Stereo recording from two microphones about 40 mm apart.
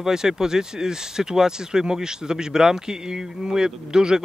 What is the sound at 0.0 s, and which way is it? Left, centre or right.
Speech, centre.